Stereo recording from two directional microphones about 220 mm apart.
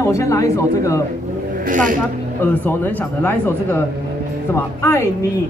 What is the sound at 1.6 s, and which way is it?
Speech, 35° right (ahead or behind).